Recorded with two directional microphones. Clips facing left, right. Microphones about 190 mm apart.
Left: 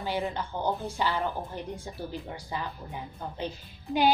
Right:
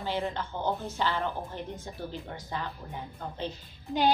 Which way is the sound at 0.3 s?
15° left (ahead or behind).